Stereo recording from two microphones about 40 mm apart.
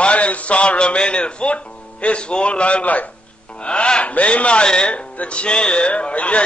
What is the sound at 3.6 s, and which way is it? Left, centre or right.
Speech, left.